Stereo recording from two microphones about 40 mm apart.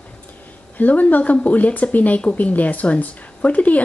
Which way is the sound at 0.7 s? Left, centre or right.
Left.